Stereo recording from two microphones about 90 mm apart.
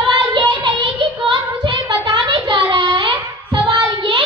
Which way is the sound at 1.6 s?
50° right (ahead or behind).